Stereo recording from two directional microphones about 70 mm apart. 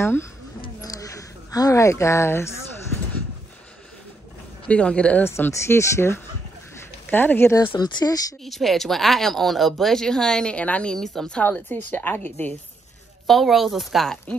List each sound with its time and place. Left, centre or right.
0.7 s a sound: left
4.6 s speech: centre
5.2 s speech: left
7.1 s a woman's voice: left
7.8 s speech: left
8.5 s speech: centre
11.4 s a woman's voice: left
13.3 s speech: centre